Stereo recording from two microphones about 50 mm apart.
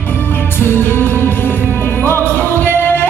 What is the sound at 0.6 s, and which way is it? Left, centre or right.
Music, left.